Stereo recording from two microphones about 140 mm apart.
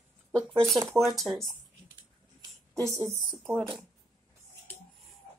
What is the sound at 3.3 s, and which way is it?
Speech, 5° right (ahead or behind).